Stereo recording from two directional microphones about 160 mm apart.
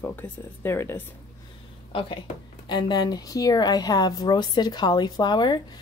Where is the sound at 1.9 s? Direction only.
35° left (ahead or behind).